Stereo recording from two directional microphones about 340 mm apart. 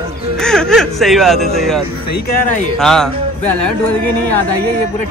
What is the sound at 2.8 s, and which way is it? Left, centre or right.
Speech, centre.